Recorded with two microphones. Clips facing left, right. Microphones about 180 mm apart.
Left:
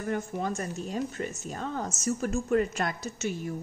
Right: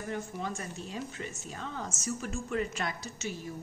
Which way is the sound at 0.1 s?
45° left (ahead or behind).